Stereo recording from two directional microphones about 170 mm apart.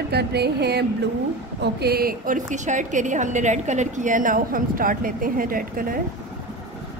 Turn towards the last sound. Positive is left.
turn(degrees=-55)  # may be behind; listen again after turning